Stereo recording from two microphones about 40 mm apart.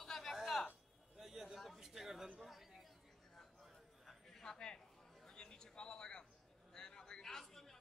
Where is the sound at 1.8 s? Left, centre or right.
Centre.